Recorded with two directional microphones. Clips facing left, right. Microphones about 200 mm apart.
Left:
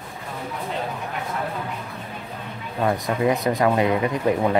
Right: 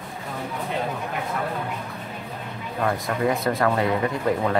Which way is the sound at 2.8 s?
20° left (ahead or behind).